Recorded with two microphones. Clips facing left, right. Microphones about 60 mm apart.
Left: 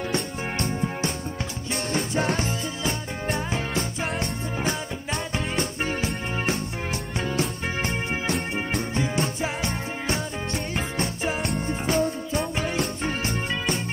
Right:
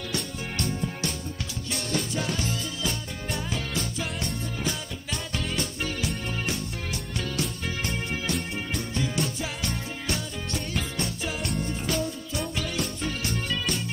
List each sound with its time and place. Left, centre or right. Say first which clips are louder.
0.1 s music: left 5 dB; left
8.9 s music: left 1 dB; left